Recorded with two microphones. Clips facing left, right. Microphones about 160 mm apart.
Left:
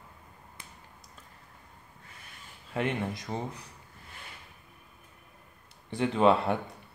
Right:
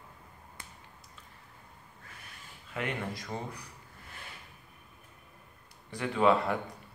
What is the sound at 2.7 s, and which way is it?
Speech, 25° left (ahead or behind).